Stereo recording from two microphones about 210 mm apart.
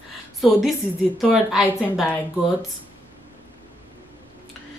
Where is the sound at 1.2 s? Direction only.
Centre (ahead or behind).